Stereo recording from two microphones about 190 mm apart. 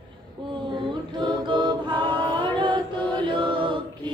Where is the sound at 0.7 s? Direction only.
25° right (ahead or behind).